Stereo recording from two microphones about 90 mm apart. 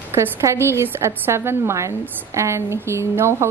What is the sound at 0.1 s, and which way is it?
A woman's voice, 30° right (ahead or behind).